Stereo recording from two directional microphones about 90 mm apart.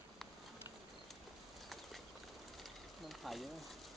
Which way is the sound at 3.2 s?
Centre (ahead or behind).